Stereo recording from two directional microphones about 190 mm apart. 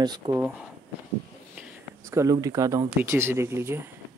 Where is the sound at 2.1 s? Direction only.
15° right (ahead or behind).